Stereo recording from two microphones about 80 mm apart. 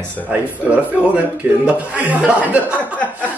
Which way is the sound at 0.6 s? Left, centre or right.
Centre.